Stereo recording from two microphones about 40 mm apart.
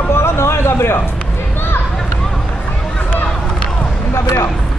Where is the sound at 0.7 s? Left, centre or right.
Left.